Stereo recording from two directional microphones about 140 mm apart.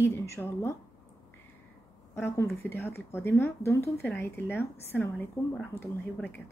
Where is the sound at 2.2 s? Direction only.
20° left (ahead or behind).